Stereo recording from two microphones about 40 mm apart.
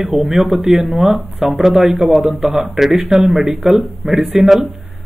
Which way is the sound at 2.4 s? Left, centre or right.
Right.